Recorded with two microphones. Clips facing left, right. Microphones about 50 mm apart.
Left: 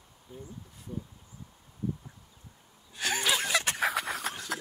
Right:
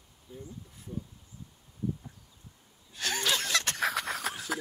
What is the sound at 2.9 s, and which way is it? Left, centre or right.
Snicker, centre.